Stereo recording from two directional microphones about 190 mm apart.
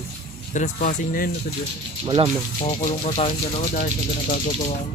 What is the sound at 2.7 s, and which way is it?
Speech, 30° left (ahead or behind).